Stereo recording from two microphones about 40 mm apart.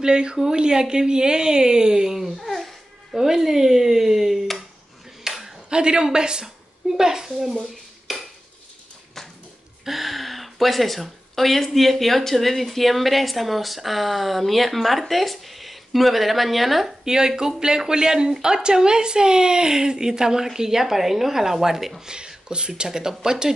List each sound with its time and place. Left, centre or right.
0.0 s speech: right
2.1 s babbling: centre
3.2 s a woman's voice: centre
5.2 s a sound: centre
5.7 s a woman's voice: right
8.1 s cutlery: centre
9.8 s speech: centre
17.0 s a woman's voice: centre
22.0 s a woman's voice: right